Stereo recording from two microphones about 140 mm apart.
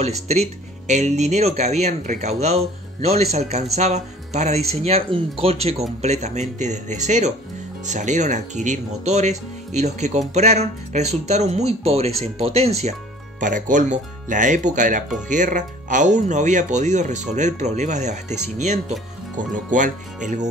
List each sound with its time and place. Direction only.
0.0 s speech: 50° right (ahead or behind)
13.4 s speech: 70° right (ahead or behind)